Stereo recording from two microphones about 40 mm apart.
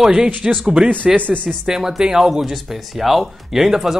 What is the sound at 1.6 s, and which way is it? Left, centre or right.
Speech, centre.